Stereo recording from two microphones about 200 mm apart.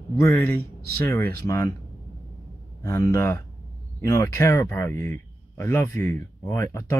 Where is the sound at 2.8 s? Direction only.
15° left (ahead or behind).